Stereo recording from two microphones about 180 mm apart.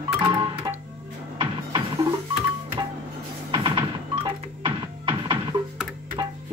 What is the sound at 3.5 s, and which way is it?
Music, 25° right (ahead or behind).